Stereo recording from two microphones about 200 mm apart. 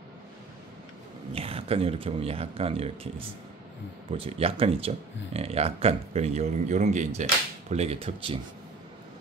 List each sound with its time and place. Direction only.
1.3 s speech: 30° right (ahead or behind)
4.1 s speech: 30° right (ahead or behind)